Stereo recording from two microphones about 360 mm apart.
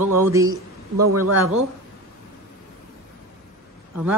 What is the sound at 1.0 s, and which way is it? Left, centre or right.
Speech, right.